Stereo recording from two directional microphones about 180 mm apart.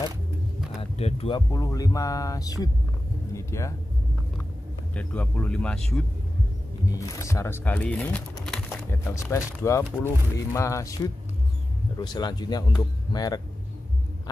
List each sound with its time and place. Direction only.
0.6 s a sound: centre (ahead or behind)
0.9 s speech: 35° left (ahead or behind)
1.5 s speech: 20° left (ahead or behind)
4.9 s speech: 10° left (ahead or behind)
6.9 s speech: 20° left (ahead or behind)
9.1 s speech: 15° left (ahead or behind)
12.0 s speech: 25° left (ahead or behind)